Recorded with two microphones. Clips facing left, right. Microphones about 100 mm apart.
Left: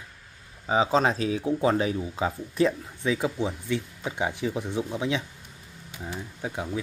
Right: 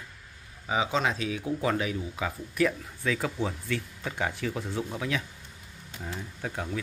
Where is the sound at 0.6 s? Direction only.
35° left (ahead or behind).